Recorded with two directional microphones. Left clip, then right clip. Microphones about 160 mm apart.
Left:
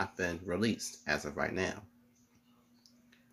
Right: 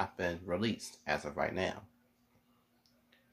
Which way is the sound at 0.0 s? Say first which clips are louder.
Even; 15° right (ahead or behind).